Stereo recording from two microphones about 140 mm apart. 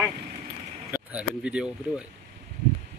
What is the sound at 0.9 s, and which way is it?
Speech, 10° right (ahead or behind).